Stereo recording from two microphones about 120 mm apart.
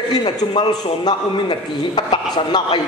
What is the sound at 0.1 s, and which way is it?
A man's voice, 35° left (ahead or behind).